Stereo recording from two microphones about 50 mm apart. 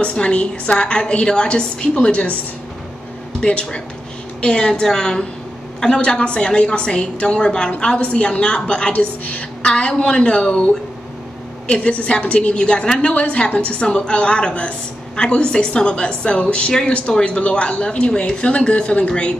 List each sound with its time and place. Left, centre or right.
0.0 s a woman's voice: left
3.3 s a woman's voice: left
5.9 s a woman's voice: left
8.9 s a woman's voice: left
9.7 s a woman's voice: centre